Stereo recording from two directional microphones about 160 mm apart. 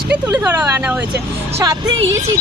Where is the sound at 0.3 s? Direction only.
15° right (ahead or behind).